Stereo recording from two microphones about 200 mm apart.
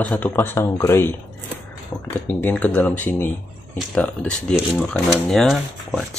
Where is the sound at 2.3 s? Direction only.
10° left (ahead or behind).